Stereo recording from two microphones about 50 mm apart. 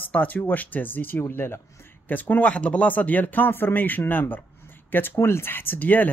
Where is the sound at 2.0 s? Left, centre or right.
Left.